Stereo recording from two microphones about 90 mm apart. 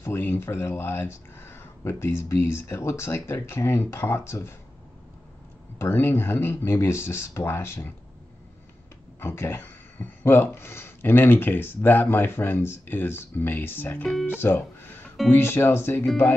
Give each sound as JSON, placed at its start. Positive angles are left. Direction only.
{"t": 0.0, "sound": "speech", "side_deg": 25}
{"t": 5.8, "sound": "speech", "side_deg": 25}
{"t": 9.2, "sound": "speech", "side_deg": 25}